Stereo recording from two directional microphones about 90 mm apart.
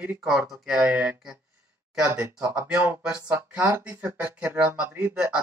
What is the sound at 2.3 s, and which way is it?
Speech, 30° right (ahead or behind).